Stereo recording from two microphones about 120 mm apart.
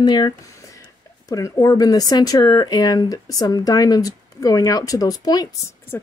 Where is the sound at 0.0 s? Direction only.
40° left (ahead or behind).